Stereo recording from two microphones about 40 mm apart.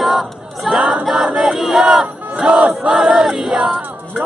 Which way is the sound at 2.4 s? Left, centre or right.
Right.